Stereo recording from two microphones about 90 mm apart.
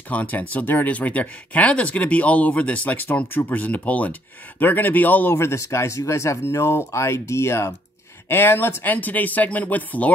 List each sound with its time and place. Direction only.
0.1 s speech: 15° left (ahead or behind)
5.3 s speech: 35° left (ahead or behind); by 10.1 s 15° left (ahead or behind)